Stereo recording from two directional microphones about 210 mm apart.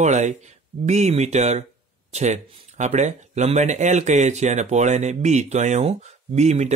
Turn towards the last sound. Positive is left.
turn(degrees=-35)  # may be behind; listen again after turning